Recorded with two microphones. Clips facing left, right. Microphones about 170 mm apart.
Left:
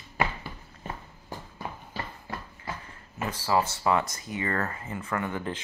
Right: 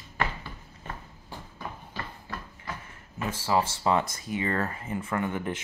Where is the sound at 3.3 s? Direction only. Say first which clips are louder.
Even; 25° right (ahead or behind).